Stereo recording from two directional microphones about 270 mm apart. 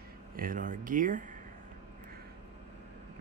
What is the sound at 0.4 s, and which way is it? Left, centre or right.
Speech, right.